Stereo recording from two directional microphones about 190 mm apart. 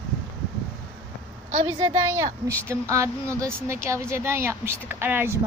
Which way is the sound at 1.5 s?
30° right (ahead or behind).